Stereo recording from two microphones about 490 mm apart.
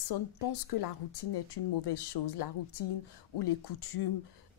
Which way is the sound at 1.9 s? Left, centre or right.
Left.